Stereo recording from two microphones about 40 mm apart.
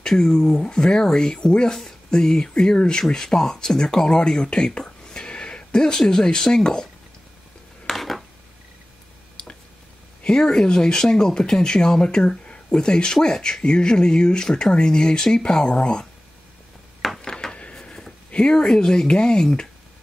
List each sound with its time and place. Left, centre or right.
0.0 s speech: centre
7.8 s a sound: centre
9.4 s squish: left
10.2 s speech: centre
17.2 s a sound: centre
18.3 s speech: left